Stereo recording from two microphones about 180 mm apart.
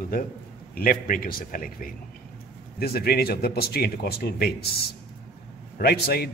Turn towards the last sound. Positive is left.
turn(degrees=60)  # may be behind; listen again after turning